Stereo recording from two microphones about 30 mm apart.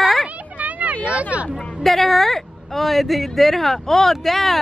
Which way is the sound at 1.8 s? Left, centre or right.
Centre.